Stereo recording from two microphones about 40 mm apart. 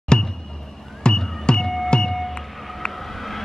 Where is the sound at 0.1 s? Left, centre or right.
Left.